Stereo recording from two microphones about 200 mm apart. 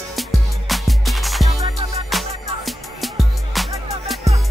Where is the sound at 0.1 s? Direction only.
Centre (ahead or behind).